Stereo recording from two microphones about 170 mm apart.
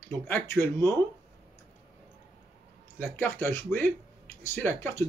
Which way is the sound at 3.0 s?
15° left (ahead or behind).